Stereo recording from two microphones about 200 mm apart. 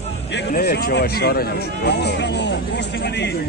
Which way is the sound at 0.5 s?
50° left (ahead or behind).